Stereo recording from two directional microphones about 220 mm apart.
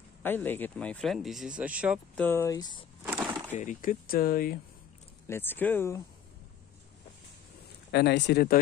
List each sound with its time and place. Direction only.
0.2 s speech: 10° left (ahead or behind)
2.2 s speech: 10° left (ahead or behind)
3.0 s a sound: 5° right (ahead or behind)
3.5 s speech: 35° left (ahead or behind)
5.2 s speech: 10° left (ahead or behind)
7.9 s speech: 50° left (ahead or behind)